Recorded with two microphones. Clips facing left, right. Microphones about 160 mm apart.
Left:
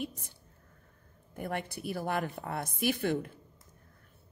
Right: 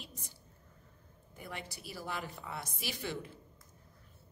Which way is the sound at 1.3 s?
55° left (ahead or behind).